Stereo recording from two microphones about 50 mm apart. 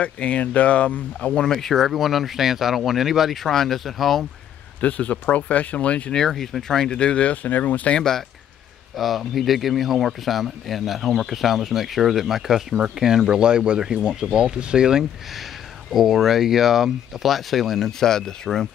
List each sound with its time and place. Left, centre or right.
0.0 s speech: left
1.5 s speech: centre
3.4 s speech: centre
4.8 s speech: left
6.1 s speech: centre; by 7.3 s left
7.4 s speech: left
8.9 s speech: centre